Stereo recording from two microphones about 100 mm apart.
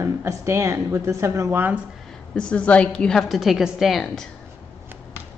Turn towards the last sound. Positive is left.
turn(degrees=0)  # may be behind; listen again after turning